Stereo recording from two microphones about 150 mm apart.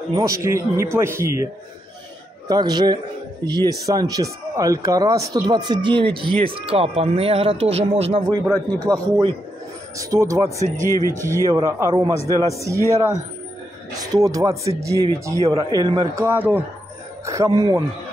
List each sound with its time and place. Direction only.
0.1 s speech: 20° right (ahead or behind); by 8.2 s 40° right (ahead or behind)
8.3 s speech: 25° right (ahead or behind)
9.9 s speech: 25° right (ahead or behind)
10.9 s speech: 20° left (ahead or behind)
11.1 s speech: 20° right (ahead or behind)
17.3 s speech: 25° right (ahead or behind)